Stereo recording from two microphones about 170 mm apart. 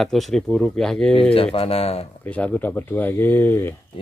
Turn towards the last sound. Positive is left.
turn(degrees=15)  # may be behind; listen again after turning